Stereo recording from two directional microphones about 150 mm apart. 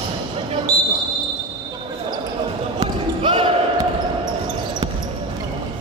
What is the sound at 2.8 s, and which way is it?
Basketball bounce, 35° right (ahead or behind).